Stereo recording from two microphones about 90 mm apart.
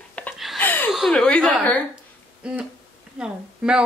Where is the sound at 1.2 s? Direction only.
10° left (ahead or behind).